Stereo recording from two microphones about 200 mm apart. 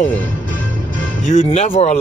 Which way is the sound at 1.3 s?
35° left (ahead or behind).